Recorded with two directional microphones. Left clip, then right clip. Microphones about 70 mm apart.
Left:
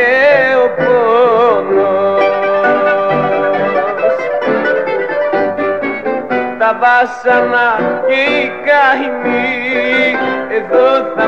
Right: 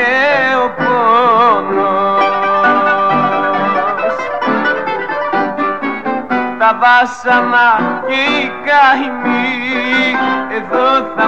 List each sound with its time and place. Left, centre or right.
0.0 s music: left
6.3 s music: left